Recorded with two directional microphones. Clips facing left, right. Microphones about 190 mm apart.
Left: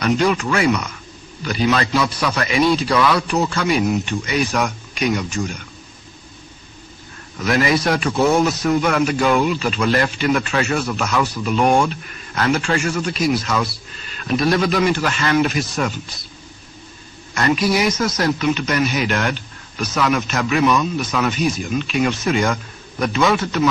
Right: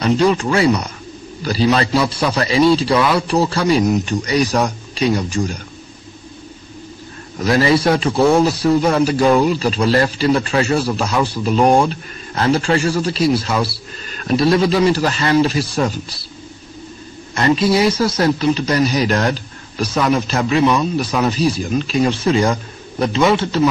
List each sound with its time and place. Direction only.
0.0 s a man's voice: 30° right (ahead or behind)
7.3 s a man's voice: 35° right (ahead or behind)
17.3 s a man's voice: 25° right (ahead or behind)